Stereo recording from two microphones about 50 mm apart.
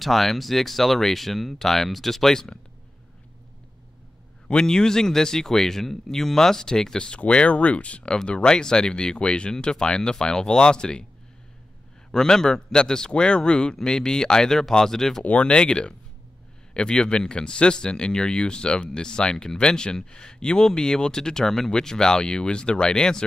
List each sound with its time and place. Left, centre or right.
0.0 s speech: centre
4.5 s speech: centre
12.1 s speech: centre
15.2 s speech: left